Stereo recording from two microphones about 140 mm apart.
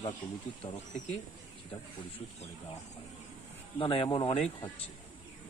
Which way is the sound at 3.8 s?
40° left (ahead or behind).